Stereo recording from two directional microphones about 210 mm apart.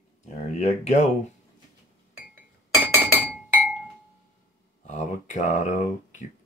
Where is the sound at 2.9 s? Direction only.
10° right (ahead or behind).